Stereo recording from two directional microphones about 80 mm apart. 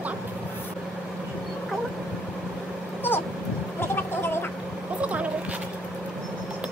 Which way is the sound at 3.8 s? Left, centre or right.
Left.